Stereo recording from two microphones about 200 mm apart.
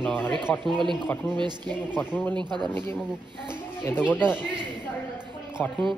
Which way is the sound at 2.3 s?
20° right (ahead or behind).